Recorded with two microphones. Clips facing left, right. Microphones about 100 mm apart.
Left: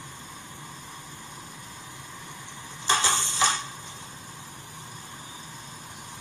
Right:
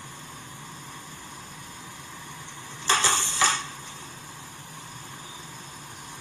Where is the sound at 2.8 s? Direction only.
20° left (ahead or behind).